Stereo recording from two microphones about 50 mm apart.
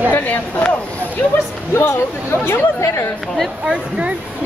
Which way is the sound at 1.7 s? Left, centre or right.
Left.